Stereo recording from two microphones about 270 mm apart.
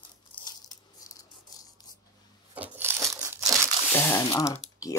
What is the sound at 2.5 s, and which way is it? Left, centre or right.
Crushing, centre.